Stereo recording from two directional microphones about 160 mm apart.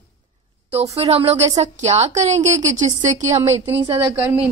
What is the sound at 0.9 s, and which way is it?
A woman's voice, 40° right (ahead or behind).